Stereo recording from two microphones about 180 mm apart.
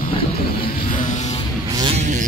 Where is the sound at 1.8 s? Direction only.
35° right (ahead or behind).